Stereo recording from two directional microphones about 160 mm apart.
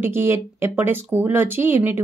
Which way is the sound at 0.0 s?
15° right (ahead or behind).